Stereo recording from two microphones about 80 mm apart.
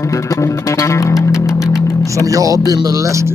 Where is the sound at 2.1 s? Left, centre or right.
Right.